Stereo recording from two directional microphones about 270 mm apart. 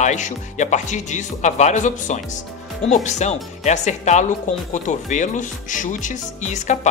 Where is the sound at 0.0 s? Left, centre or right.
Left.